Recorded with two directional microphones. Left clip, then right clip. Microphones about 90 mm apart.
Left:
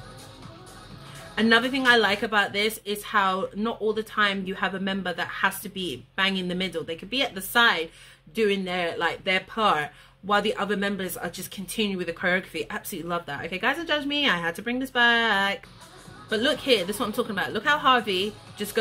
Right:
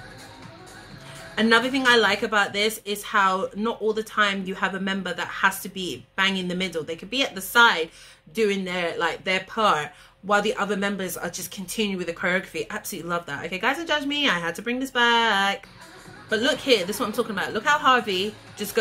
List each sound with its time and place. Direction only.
1.3 s a woman's voice: 35° left (ahead or behind)